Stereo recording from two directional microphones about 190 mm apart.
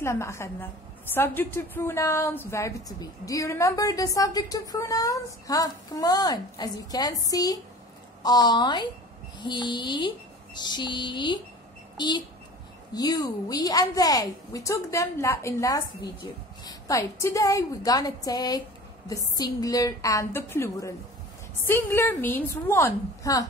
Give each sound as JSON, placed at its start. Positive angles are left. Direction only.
{"t": 0.0, "sound": "a woman's voice", "side_deg": 15}
{"t": 12.9, "sound": "a woman's voice", "side_deg": 20}